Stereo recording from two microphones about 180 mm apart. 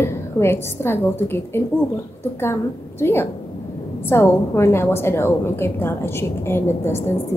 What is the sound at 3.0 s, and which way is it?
A woman's voice, 10° left (ahead or behind).